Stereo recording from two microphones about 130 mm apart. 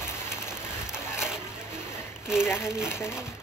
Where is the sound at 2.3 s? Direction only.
5° right (ahead or behind).